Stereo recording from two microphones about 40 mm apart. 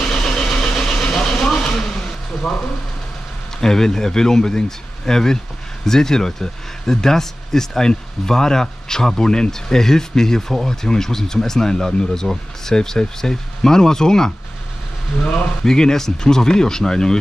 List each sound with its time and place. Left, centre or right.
0.1 s vehicle: centre
1.2 s vehicle: centre
3.6 s speech: centre
15.6 s speech: centre